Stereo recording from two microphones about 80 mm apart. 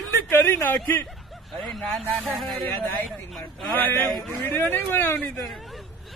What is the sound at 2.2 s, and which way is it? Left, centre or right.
Speech, left.